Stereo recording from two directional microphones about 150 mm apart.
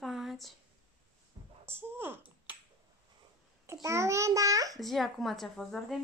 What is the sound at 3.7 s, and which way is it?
Babbling, 20° right (ahead or behind).